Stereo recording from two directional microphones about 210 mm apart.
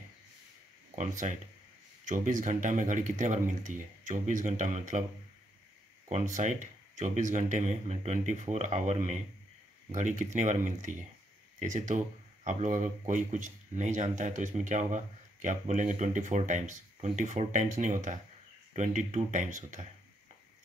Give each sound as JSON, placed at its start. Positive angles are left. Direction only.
{"t": 0.9, "sound": "a man's voice", "side_deg": -35}
{"t": 6.0, "sound": "a man's voice", "side_deg": -35}